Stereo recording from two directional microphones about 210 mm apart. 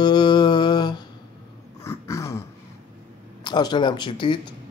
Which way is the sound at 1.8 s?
15° left (ahead or behind).